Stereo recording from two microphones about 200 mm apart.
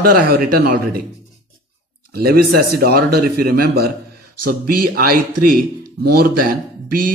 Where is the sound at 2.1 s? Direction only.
50° right (ahead or behind).